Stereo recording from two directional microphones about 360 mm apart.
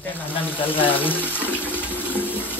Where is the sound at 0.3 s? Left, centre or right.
Centre.